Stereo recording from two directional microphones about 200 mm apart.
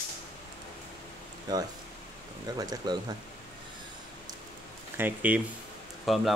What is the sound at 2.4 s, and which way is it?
Speech, 20° right (ahead or behind).